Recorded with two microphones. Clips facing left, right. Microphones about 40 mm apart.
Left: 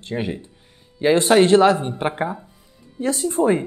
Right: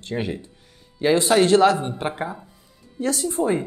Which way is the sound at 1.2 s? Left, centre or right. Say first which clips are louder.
Left 2 dB; left.